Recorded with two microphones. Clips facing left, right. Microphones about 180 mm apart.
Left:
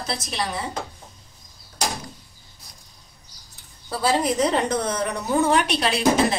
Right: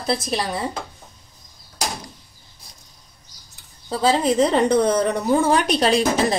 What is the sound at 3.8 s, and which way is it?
Speech, 25° right (ahead or behind).